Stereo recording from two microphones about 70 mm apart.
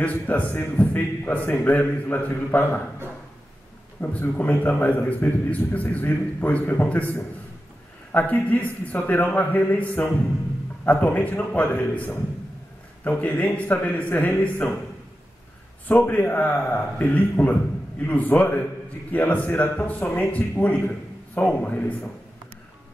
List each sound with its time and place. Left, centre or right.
0.0 s a man's voice: left
4.0 s a man's voice: left
15.9 s a man's voice: left